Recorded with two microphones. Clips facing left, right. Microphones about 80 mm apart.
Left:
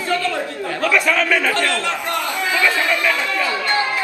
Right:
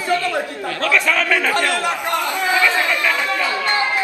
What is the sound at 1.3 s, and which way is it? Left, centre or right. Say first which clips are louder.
Chatter: even; centre.